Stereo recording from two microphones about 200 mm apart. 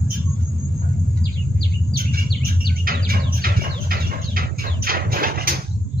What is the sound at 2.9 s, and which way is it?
Chicken, 45° right (ahead or behind).